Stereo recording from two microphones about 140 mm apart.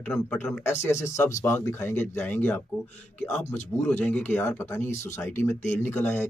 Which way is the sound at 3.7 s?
15° left (ahead or behind).